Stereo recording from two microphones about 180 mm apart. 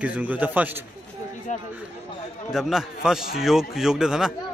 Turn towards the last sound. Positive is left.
turn(degrees=-5)  # may be behind; listen again after turning